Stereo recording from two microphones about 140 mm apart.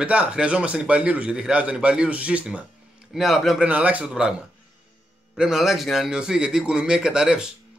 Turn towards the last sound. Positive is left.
turn(degrees=-5)  # may be behind; listen again after turning